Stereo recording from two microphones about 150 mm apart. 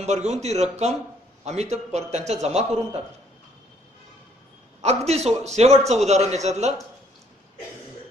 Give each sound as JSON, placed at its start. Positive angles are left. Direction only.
{"t": 0.0, "sound": "a man's voice", "side_deg": -50}
{"t": 4.8, "sound": "a man's voice", "side_deg": -45}